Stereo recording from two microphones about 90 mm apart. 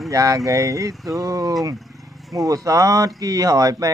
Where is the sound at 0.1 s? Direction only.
35° right (ahead or behind).